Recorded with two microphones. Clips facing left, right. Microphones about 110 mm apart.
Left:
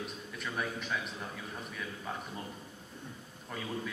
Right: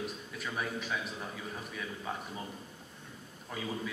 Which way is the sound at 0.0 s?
5° right (ahead or behind).